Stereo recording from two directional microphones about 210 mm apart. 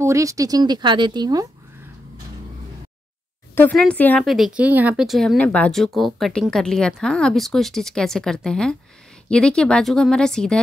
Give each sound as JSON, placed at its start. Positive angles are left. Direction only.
{"t": 0.0, "sound": "speech", "side_deg": -15}
{"t": 3.5, "sound": "speech", "side_deg": 5}